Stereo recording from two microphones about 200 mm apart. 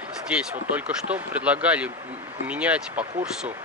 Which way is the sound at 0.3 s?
5° right (ahead or behind).